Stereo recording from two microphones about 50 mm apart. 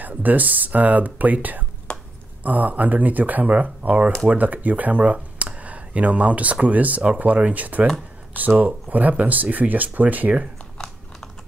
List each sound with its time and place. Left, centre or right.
0.0 s speech: right
1.9 s a sound: centre
2.4 s speech: right